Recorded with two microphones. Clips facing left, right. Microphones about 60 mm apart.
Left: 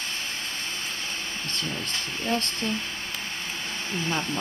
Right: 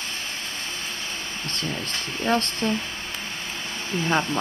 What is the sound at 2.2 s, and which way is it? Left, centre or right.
Speech, right.